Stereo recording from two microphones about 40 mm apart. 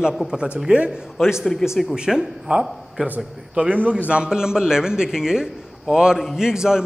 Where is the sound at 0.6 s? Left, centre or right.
Right.